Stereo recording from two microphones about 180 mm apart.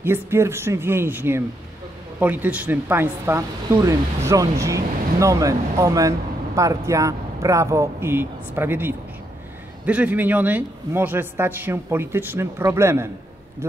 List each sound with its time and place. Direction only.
0.0 s speech: 15° right (ahead or behind)